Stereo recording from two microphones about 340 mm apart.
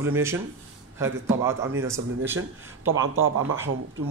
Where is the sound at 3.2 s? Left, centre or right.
Right.